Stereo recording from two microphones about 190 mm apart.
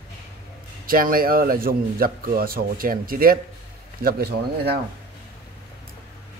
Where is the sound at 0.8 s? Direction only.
50° right (ahead or behind).